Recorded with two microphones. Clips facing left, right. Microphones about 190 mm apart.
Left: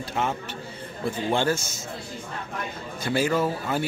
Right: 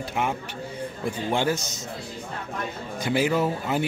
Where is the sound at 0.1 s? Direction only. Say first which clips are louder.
Left 1 dB; 15° right (ahead or behind).